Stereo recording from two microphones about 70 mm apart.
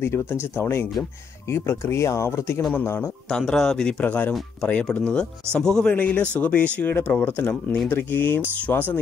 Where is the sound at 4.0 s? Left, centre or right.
Left.